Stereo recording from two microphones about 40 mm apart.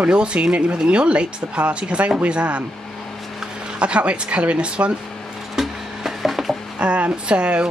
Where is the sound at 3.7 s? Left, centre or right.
Right.